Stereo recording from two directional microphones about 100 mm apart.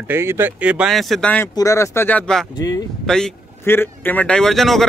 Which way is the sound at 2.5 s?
35° left (ahead or behind).